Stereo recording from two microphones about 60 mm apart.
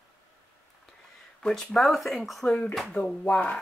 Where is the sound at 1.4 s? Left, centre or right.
Centre.